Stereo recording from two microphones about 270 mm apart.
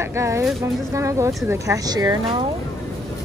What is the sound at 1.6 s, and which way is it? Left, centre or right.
Speech, centre.